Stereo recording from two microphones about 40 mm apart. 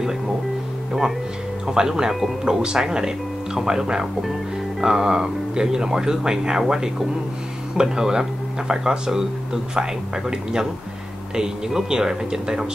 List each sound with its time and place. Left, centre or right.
1.7 s speech: centre
7.7 s speech: centre